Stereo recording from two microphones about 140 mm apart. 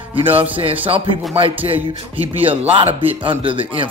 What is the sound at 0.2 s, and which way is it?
A man's voice, 40° right (ahead or behind).